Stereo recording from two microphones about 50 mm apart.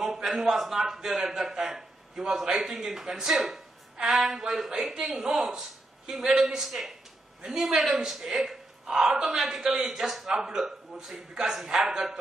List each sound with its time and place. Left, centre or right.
0.0 s a man's voice: centre